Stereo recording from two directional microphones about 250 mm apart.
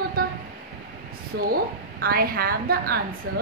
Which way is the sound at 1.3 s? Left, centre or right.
Right.